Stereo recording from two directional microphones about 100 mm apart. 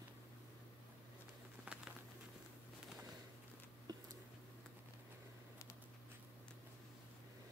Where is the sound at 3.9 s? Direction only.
40° right (ahead or behind).